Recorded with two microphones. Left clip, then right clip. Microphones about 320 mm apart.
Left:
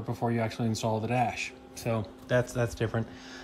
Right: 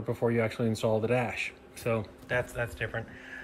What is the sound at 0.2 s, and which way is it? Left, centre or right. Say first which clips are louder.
Speech: right 2 dB; left.